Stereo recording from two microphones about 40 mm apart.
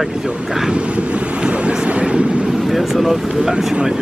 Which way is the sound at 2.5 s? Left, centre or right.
Centre.